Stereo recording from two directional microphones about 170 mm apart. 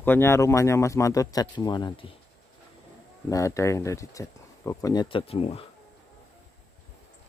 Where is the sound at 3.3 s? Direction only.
20° left (ahead or behind); by 5.6 s 35° left (ahead or behind).